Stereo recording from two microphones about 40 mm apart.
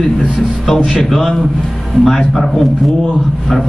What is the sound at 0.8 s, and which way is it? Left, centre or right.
A man's voice, centre.